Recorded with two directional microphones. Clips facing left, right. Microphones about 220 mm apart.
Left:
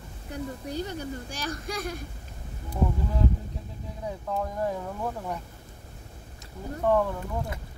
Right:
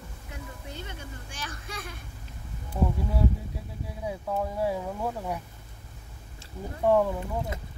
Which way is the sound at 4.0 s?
10° right (ahead or behind).